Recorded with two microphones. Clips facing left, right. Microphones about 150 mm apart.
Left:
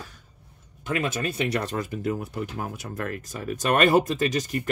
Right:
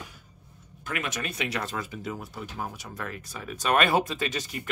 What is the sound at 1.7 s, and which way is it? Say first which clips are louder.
Speech: left 6 dB; 45° left (ahead or behind).